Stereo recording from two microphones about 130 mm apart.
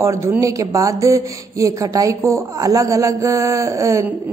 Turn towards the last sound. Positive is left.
turn(degrees=-25)  # may be behind; listen again after turning